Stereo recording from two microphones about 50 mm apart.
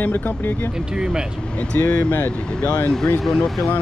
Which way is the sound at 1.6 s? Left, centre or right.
Left.